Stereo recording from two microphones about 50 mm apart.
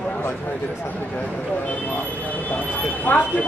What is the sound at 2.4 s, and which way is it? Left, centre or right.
Speech, left.